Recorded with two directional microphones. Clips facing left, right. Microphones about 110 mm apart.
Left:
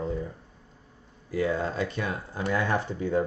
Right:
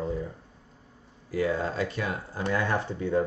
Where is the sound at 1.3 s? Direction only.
25° left (ahead or behind).